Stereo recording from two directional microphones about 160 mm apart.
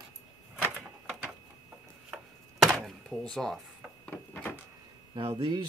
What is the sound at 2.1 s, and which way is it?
Chopping, centre (ahead or behind).